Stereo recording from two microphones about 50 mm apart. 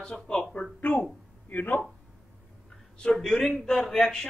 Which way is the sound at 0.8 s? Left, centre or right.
Left.